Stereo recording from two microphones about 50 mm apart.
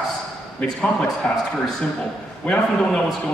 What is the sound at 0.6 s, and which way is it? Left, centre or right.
Speech, left.